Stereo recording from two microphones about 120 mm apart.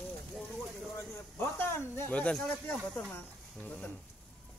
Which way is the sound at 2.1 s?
10° left (ahead or behind).